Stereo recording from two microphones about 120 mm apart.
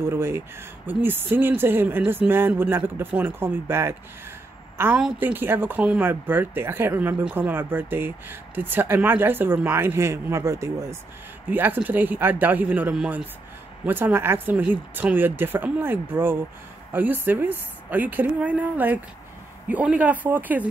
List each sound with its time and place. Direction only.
0.0 s speech: 20° right (ahead or behind)